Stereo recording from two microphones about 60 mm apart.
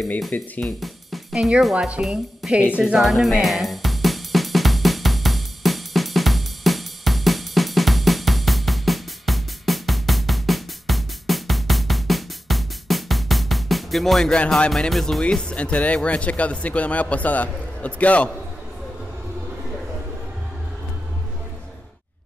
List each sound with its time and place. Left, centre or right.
0.3 s speech: centre
0.7 s music: centre
1.6 s a woman's voice: centre
3.0 s music: centre
14.3 s speech: centre
14.8 s speech: centre
15.5 s speech: left